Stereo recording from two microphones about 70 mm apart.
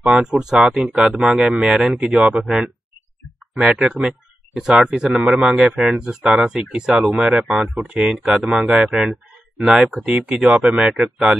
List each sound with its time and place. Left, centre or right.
0.0 s speech: centre
9.1 s a sound: centre
10.0 s speech: centre